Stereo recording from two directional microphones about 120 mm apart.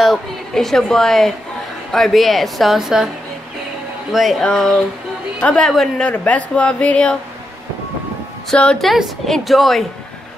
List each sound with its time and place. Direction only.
0.0 s a woman's voice: centre (ahead or behind)
4.1 s a woman's voice: centre (ahead or behind)
8.5 s a woman's voice: 5° left (ahead or behind)